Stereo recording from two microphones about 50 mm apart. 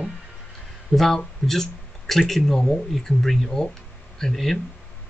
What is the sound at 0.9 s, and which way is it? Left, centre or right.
Speech, centre.